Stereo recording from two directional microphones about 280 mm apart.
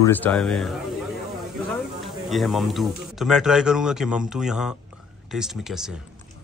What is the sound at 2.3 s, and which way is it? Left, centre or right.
A man's voice, centre.